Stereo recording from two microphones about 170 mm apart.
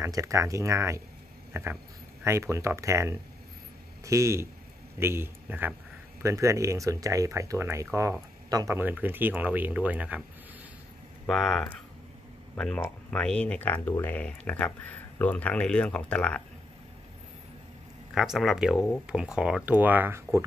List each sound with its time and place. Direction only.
0.0 s speech: 20° right (ahead or behind)
1.5 s a sound: 10° right (ahead or behind)
2.2 s a man's voice: 15° right (ahead or behind)
11.2 s speech: 5° left (ahead or behind)
18.1 s speech: centre (ahead or behind)